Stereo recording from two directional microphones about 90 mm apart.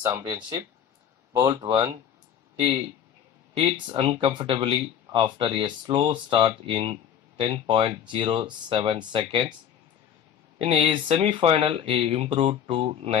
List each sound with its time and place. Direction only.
0.2 s speech: 45° right (ahead or behind)
3.5 s speech: 75° right (ahead or behind)
10.6 s speech: 75° right (ahead or behind)